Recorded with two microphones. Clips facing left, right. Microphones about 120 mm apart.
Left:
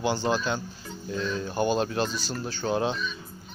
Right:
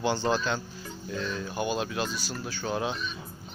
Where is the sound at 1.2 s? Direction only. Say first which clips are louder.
Left 5 dB; 35° left (ahead or behind).